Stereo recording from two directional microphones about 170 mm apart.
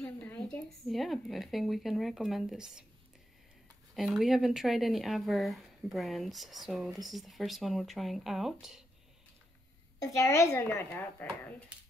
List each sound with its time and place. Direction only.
0.0 s speech: 10° left (ahead or behind)
3.9 s speech: centre (ahead or behind)
9.9 s a woman's voice: 15° left (ahead or behind)